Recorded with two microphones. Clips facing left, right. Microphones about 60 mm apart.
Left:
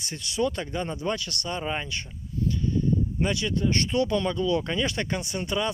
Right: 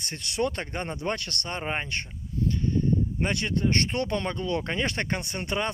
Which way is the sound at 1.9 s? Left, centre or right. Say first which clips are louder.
Right 1 dB; right.